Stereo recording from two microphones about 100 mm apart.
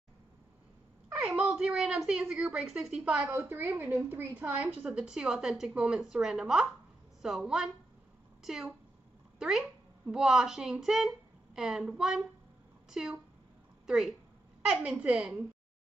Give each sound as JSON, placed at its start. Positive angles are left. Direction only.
{"t": 1.1, "sound": "a woman's voice", "side_deg": -10}
{"t": 3.3, "sound": "a woman's voice", "side_deg": -25}